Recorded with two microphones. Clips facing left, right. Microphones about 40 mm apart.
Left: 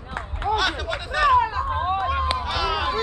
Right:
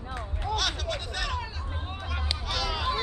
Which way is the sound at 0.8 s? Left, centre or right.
Left.